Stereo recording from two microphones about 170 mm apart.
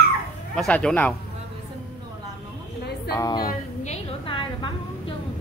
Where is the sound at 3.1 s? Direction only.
20° left (ahead or behind).